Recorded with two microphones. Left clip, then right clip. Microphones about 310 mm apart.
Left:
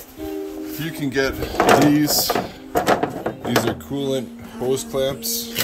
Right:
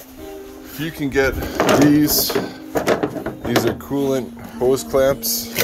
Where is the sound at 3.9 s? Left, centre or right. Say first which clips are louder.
Right 3 dB; centre.